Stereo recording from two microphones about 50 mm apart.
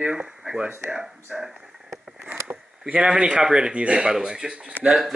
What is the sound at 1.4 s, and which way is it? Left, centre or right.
Radio, centre.